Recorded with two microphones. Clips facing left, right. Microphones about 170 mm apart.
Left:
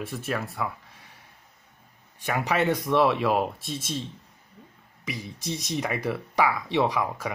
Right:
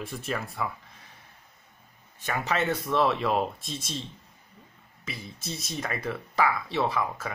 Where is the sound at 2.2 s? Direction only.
10° left (ahead or behind).